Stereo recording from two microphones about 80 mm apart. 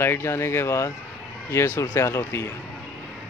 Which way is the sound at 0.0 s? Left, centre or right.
Left.